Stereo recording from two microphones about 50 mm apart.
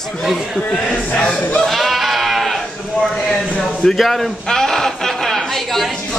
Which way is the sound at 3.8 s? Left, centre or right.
Centre.